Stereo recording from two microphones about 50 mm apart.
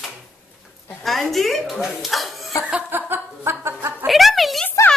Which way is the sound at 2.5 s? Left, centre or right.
Left.